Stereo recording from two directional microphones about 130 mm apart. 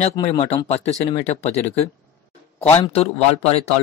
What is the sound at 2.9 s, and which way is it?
Speech, 50° left (ahead or behind).